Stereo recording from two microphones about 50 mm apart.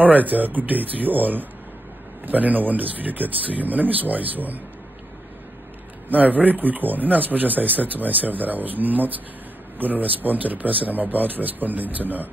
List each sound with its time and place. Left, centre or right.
0.0 s speech: right
6.0 s speech: right